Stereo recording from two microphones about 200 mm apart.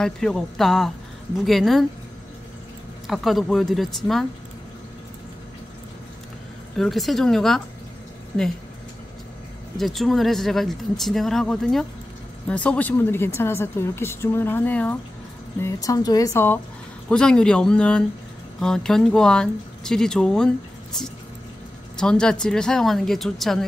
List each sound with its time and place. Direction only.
0.0 s speech: 5° left (ahead or behind)
3.1 s speech: centre (ahead or behind)
6.8 s speech: centre (ahead or behind)
9.8 s speech: centre (ahead or behind)